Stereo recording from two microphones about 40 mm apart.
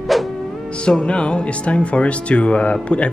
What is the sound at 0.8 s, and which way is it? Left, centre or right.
A man's voice, left.